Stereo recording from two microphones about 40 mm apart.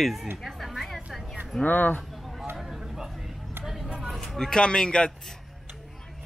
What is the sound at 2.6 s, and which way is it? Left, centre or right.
Vehicle, centre.